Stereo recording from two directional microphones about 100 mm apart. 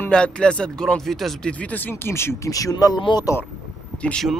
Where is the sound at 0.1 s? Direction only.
10° left (ahead or behind).